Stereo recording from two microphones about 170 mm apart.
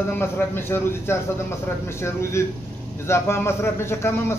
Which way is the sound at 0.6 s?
15° left (ahead or behind).